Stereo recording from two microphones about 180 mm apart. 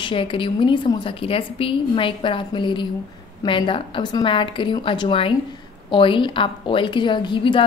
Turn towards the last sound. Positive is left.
turn(degrees=30)  # may be behind; listen again after turning